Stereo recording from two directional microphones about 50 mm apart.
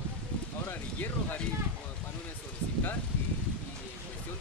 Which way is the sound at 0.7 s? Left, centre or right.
Left.